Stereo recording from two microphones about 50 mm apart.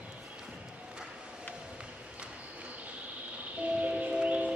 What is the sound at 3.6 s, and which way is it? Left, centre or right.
Music, right.